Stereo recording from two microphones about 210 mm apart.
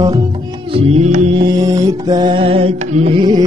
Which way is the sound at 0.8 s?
35° right (ahead or behind).